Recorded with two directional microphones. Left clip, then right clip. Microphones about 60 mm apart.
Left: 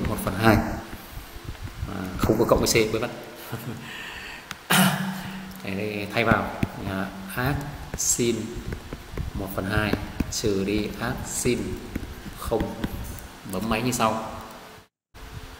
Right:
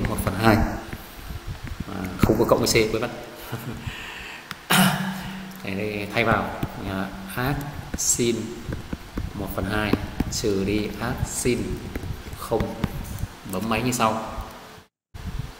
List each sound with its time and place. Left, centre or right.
0.1 s a sound: centre
1.9 s a sound: centre
2.1 s speech: centre
3.5 s cough: centre
5.7 s a man's voice: centre
6.9 s speech: centre
9.4 s speech: centre
13.7 s a man's voice: centre